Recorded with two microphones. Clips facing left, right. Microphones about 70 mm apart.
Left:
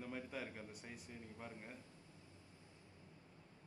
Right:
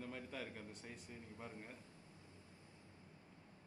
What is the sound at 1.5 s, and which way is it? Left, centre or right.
Speech, left.